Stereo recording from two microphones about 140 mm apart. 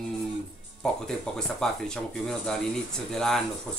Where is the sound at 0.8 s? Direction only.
5° left (ahead or behind).